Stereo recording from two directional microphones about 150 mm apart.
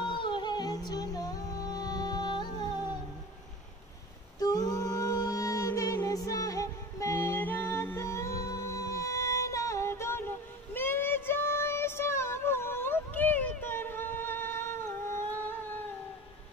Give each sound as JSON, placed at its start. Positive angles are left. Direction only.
{"t": 0.0, "sound": "music", "side_deg": 35}
{"t": 4.4, "sound": "music", "side_deg": 25}